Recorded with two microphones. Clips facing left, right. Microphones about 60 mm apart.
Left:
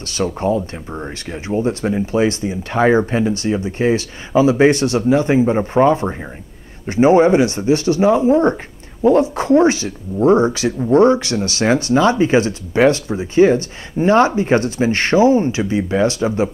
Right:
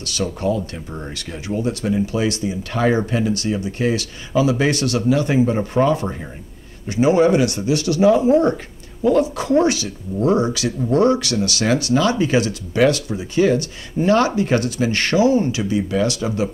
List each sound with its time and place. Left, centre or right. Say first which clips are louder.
0.0 s speech: left 3 dB; left